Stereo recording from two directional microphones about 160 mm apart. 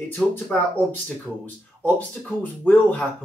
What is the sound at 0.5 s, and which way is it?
Speech, 10° left (ahead or behind).